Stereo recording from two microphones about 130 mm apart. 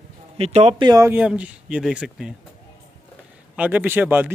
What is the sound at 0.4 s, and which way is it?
Speech, 55° right (ahead or behind).